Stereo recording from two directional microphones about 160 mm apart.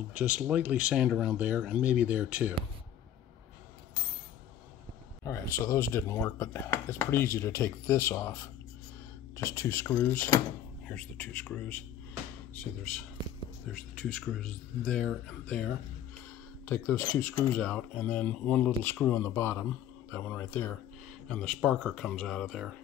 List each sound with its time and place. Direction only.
0.1 s speech: 10° right (ahead or behind)
5.2 s speech: 20° left (ahead or behind)
13.9 s speech: 5° left (ahead or behind)